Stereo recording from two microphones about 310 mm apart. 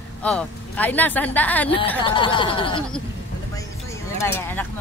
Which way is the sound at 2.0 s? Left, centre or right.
Centre.